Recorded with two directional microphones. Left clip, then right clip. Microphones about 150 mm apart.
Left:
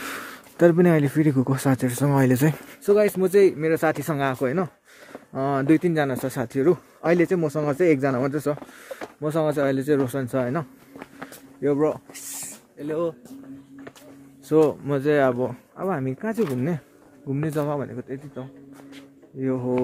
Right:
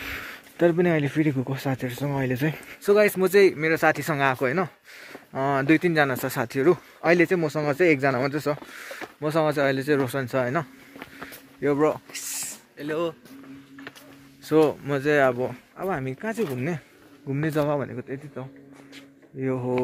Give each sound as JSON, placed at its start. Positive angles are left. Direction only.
{"t": 0.2, "sound": "speech", "side_deg": 30}
{"t": 1.5, "sound": "speech", "side_deg": 40}
{"t": 2.8, "sound": "speech", "side_deg": 5}
{"t": 8.7, "sound": "speech", "side_deg": 5}
{"t": 11.6, "sound": "speech", "side_deg": -5}
{"t": 12.1, "sound": "speech", "side_deg": 20}
{"t": 14.5, "sound": "speech", "side_deg": 10}
{"t": 14.9, "sound": "speech", "side_deg": 25}
{"t": 17.3, "sound": "speech", "side_deg": 5}
{"t": 17.6, "sound": "speech", "side_deg": -50}
{"t": 19.4, "sound": "speech", "side_deg": -40}